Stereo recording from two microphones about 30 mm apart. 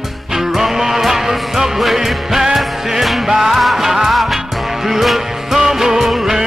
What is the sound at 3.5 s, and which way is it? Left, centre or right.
Music, centre.